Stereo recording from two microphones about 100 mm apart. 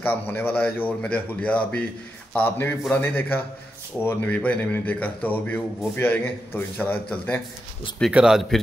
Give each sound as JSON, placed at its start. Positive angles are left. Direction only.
{"t": 0.0, "sound": "a man's voice", "side_deg": 20}
{"t": 8.1, "sound": "speech", "side_deg": -10}